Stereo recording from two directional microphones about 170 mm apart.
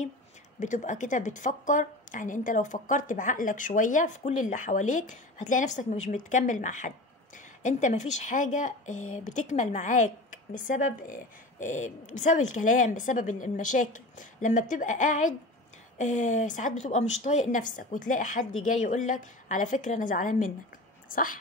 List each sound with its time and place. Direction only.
0.6 s speech: 45° left (ahead or behind)